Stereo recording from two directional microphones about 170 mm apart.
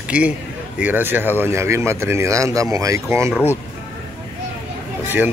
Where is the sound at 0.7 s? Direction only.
10° right (ahead or behind).